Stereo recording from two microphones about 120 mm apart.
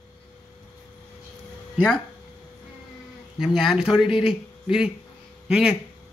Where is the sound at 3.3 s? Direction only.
5° right (ahead or behind).